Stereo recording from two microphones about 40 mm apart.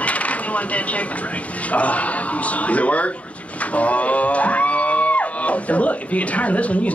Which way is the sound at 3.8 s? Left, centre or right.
Left.